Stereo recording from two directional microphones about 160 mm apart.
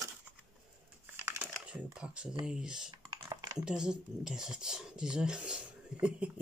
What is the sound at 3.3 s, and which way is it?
Computer keyboard, 20° right (ahead or behind).